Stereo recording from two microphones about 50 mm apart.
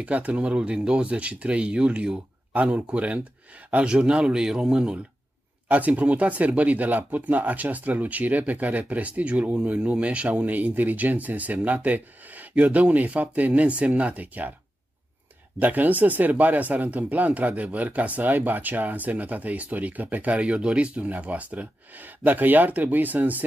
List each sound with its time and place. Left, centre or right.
0.0 s speech: right
0.5 s speech: centre
5.7 s speech: right
10.4 s speech: right
15.6 s speech: right
20.3 s speech: centre; by 23.4 s right